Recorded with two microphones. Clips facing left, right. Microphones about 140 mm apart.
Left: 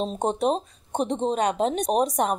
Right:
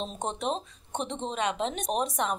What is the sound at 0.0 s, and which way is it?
A woman's voice, 40° left (ahead or behind).